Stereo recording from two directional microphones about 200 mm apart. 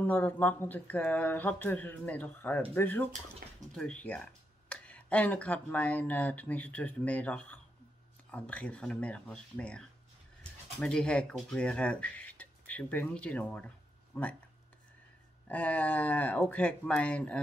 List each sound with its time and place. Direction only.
0.0 s speech: 10° left (ahead or behind)
3.4 s dishes: 50° right (ahead or behind)
3.7 s speech: 5° left (ahead or behind)
15.4 s speech: 10° left (ahead or behind)